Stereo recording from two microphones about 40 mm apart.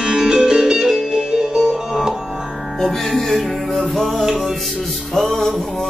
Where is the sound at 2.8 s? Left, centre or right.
Centre.